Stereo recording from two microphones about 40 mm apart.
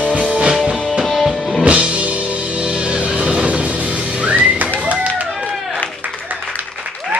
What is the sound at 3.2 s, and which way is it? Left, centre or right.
Music, right.